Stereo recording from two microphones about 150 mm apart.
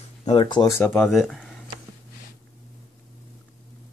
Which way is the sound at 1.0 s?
Centre (ahead or behind).